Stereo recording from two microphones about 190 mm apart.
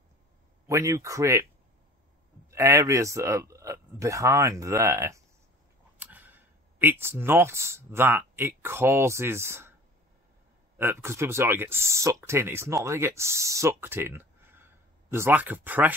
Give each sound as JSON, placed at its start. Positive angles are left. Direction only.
{"t": 0.7, "sound": "speech", "side_deg": -15}
{"t": 2.5, "sound": "speech", "side_deg": -15}
{"t": 10.8, "sound": "speech", "side_deg": -15}